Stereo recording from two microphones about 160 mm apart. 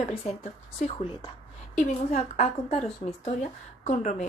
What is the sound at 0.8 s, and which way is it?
A woman's voice, 50° left (ahead or behind).